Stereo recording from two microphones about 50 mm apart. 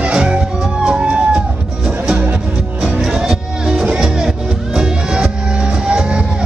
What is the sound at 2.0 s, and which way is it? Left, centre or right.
Music, right.